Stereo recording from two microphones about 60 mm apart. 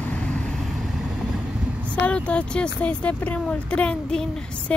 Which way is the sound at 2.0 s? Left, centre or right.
Centre.